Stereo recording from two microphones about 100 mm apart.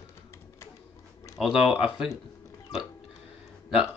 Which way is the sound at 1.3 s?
5° right (ahead or behind).